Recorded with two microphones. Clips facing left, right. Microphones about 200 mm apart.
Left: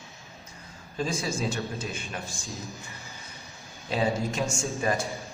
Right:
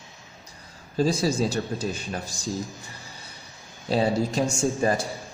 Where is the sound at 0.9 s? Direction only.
35° right (ahead or behind).